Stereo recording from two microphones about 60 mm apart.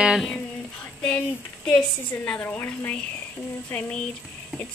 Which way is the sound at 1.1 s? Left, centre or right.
Centre.